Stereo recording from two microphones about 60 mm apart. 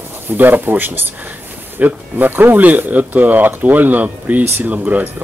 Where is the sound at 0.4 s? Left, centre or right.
Right.